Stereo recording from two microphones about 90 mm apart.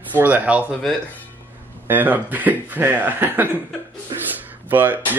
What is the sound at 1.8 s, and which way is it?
Speech, 20° right (ahead or behind).